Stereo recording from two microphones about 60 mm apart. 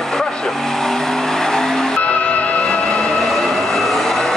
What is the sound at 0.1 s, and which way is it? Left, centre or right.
Vehicle, centre.